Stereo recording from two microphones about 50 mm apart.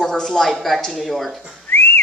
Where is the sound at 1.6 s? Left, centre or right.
Left.